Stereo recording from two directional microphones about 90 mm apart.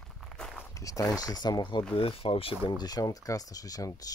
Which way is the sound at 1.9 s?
85° left.